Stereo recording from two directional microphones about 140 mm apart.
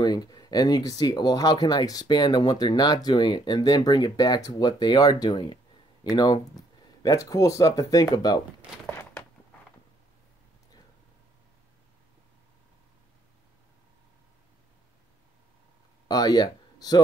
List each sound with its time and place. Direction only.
0.0 s speech: 30° left (ahead or behind)
16.1 s speech: 30° left (ahead or behind)